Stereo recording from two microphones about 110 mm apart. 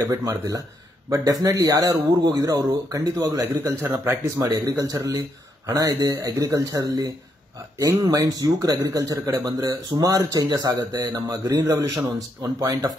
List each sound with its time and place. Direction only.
0.1 s speech: 30° right (ahead or behind)